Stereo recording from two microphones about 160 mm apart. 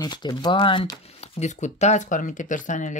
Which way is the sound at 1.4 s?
45° left (ahead or behind).